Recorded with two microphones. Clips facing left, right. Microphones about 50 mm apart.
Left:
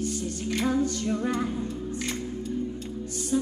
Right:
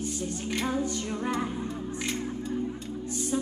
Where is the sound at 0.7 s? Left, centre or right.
Right.